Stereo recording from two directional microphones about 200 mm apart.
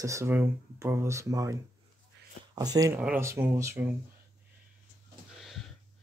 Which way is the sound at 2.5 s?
20° right (ahead or behind).